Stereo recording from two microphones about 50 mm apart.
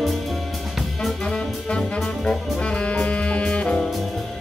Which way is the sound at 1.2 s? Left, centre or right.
Centre.